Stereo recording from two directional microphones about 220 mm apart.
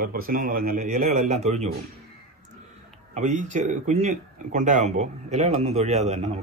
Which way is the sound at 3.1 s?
35° right (ahead or behind).